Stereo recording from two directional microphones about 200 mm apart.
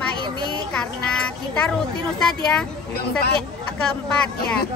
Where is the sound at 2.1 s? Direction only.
5° left (ahead or behind).